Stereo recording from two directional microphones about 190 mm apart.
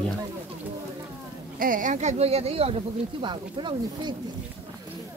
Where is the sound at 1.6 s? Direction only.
45° right (ahead or behind); by 4.1 s 25° right (ahead or behind).